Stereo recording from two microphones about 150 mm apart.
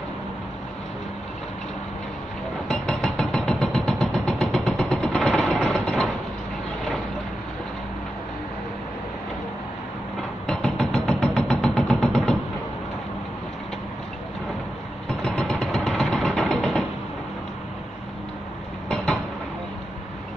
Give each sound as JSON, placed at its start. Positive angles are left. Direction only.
{"t": 2.7, "sound": "vehicle", "side_deg": 5}
{"t": 10.4, "sound": "vehicle", "side_deg": 5}
{"t": 15.0, "sound": "vehicle", "side_deg": 5}